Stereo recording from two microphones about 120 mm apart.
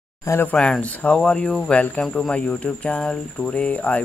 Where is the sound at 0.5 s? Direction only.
5° left (ahead or behind).